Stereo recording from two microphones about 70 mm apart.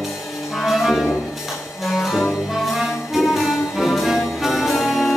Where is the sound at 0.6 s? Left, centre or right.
Centre.